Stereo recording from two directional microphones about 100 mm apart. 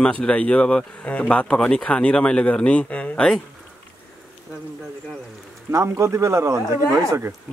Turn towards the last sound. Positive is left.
turn(degrees=-35)  # may be behind; listen again after turning